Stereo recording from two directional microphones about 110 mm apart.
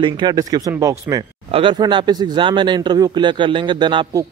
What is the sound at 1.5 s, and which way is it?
A man's voice, 50° right (ahead or behind).